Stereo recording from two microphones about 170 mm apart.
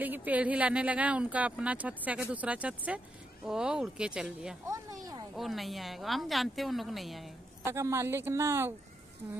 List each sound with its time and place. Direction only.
0.0 s a woman's voice: 10° right (ahead or behind)
4.6 s a sound: 20° right (ahead or behind)
5.3 s a woman's voice: centre (ahead or behind)
7.6 s speech: 15° right (ahead or behind)